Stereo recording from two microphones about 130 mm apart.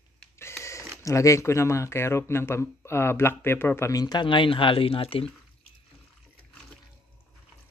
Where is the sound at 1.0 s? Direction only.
25° left (ahead or behind); by 5.2 s 45° left (ahead or behind).